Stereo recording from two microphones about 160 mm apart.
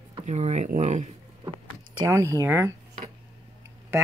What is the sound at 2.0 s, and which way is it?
Speech, 20° right (ahead or behind).